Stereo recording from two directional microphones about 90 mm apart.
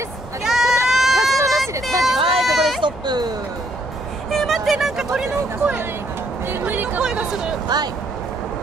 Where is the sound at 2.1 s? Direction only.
90° right.